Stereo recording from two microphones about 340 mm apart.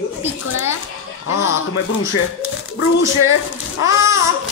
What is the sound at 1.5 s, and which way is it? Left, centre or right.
Speech, left.